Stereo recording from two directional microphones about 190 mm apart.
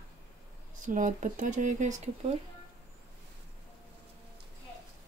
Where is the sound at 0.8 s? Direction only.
40° right (ahead or behind).